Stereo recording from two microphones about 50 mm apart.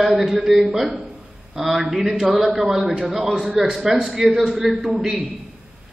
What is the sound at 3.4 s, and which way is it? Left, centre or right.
Speech, centre.